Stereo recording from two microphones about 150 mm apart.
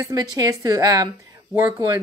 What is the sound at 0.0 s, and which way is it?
A woman's voice, 25° right (ahead or behind).